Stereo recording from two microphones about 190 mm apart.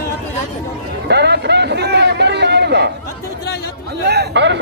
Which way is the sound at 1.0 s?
60° right (ahead or behind).